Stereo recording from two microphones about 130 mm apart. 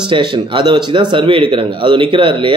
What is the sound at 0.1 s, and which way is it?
A man's voice, 40° right (ahead or behind).